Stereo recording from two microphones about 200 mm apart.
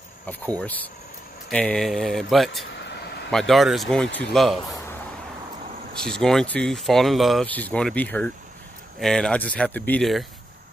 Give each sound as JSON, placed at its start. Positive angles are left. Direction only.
{"t": 0.3, "sound": "speech", "side_deg": 5}
{"t": 2.9, "sound": "a sound", "side_deg": 55}
{"t": 3.3, "sound": "speech", "side_deg": 0}
{"t": 5.9, "sound": "speech", "side_deg": 5}